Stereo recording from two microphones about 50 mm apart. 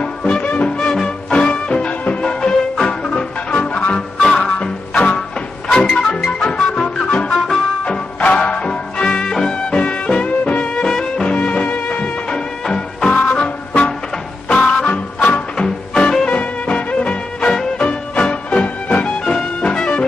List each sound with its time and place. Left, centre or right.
0.0 s music: centre
0.4 s music: left
0.9 s music: centre
7.2 s music: centre
11.3 s music: left
13.1 s music: left
15.1 s music: left
15.5 s music: centre